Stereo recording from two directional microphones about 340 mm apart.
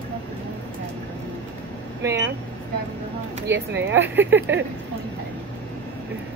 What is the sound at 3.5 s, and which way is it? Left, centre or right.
Speech, right.